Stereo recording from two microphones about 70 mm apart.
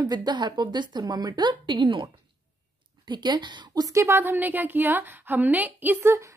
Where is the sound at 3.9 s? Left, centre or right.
Right.